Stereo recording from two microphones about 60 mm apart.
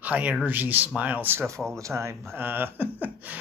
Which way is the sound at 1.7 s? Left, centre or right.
Right.